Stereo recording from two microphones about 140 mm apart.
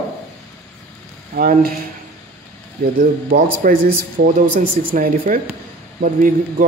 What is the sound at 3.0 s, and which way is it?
Speech, 75° right (ahead or behind).